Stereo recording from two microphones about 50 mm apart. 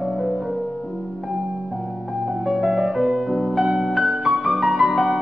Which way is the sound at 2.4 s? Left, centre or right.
Centre.